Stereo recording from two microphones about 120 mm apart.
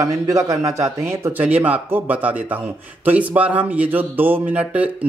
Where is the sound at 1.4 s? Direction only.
15° right (ahead or behind).